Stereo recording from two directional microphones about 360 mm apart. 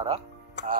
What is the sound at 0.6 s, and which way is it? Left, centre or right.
Speech, left.